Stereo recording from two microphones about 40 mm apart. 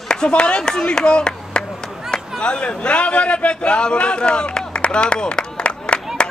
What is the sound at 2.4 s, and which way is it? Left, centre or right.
A man's voice, left.